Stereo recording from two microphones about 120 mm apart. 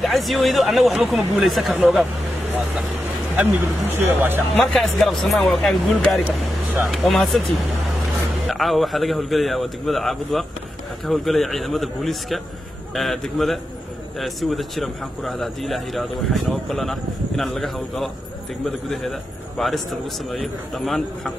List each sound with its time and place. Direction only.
0.1 s a man's voice: centre (ahead or behind)
3.3 s speech: 15° right (ahead or behind)
4.7 s a man's voice: centre (ahead or behind)
6.2 s speech: 15° right (ahead or behind)
6.9 s a man's voice: centre (ahead or behind)
19.6 s a man's voice: centre (ahead or behind)